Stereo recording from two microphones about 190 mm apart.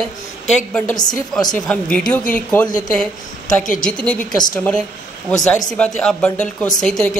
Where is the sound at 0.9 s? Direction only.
20° left (ahead or behind).